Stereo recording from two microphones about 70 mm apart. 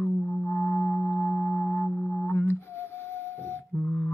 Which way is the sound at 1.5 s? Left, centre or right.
Left.